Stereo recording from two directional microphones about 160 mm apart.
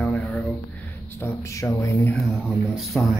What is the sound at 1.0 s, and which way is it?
Speech, 15° left (ahead or behind).